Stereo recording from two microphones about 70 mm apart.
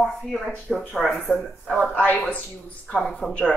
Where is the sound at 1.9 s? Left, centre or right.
Left.